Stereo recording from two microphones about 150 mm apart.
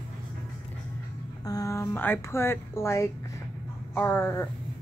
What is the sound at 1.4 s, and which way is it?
Speech, 25° left (ahead or behind).